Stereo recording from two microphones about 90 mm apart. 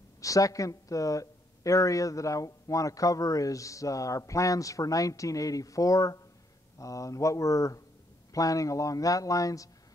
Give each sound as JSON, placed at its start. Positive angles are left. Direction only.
{"t": 0.2, "sound": "speech", "side_deg": 40}